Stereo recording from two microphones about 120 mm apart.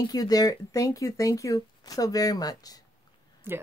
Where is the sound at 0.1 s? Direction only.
30° left (ahead or behind).